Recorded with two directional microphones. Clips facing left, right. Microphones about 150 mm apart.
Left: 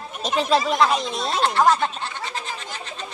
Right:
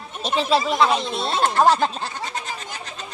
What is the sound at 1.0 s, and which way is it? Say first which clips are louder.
Speech: right 1 dB; 30° right (ahead or behind).